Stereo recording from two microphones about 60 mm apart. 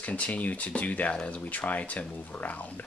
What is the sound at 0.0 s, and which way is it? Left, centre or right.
Speech, left.